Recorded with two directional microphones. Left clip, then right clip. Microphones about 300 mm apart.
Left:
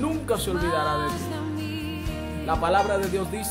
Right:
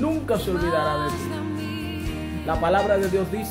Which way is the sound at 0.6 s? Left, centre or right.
Centre.